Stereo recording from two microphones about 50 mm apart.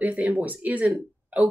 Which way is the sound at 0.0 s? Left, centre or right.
Right.